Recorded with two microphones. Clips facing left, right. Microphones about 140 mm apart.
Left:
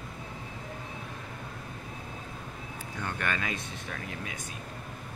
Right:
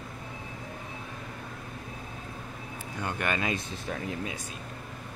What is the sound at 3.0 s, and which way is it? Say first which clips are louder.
Speech: right 3 dB; 15° right (ahead or behind).